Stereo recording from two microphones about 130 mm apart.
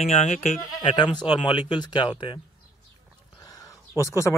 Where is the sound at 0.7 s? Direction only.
35° left (ahead or behind).